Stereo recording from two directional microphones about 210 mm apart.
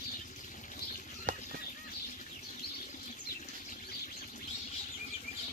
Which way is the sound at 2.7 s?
40° left (ahead or behind).